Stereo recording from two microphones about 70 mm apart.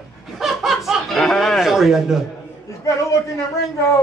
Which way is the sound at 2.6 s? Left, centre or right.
Left.